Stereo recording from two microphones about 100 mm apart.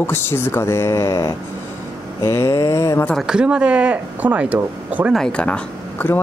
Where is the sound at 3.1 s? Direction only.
5° right (ahead or behind).